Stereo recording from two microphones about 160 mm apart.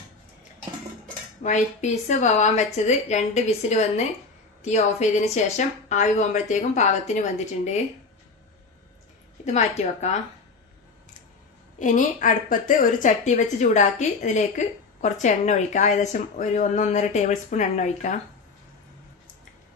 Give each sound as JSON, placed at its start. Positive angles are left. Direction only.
{"t": 1.4, "sound": "a woman's voice", "side_deg": 45}
{"t": 9.4, "sound": "speech", "side_deg": 45}
{"t": 11.8, "sound": "speech", "side_deg": 55}